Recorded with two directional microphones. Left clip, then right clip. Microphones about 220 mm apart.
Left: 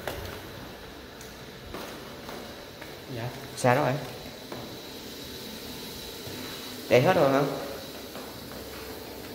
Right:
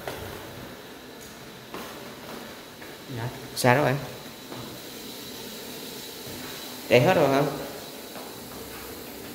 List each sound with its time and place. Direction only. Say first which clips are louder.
3.6 s speech: right 2 dB; 30° right (ahead or behind)
6.9 s speech: right 1 dB; 15° right (ahead or behind)